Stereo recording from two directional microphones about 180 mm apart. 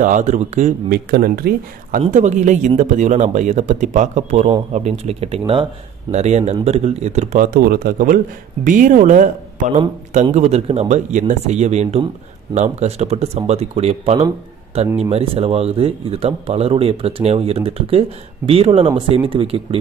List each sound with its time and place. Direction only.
0.0 s speech: 45° right (ahead or behind)
0.8 s a man's voice: 60° right (ahead or behind)
10.3 s a man's voice: 35° right (ahead or behind)